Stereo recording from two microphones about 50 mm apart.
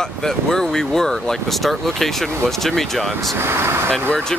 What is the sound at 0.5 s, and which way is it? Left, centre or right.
Speech, centre.